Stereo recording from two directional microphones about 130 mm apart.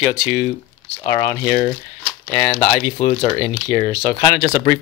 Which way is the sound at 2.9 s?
45° left (ahead or behind).